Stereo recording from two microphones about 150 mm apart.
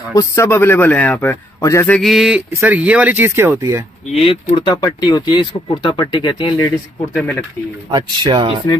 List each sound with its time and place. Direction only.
0.1 s a man's voice: 20° left (ahead or behind)
1.9 s a sound: centre (ahead or behind)
2.5 s speech: 10° right (ahead or behind)
4.1 s speech: 40° left (ahead or behind)
7.9 s speech: 35° right (ahead or behind)